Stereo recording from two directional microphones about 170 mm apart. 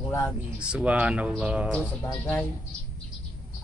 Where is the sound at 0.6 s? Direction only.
5° right (ahead or behind).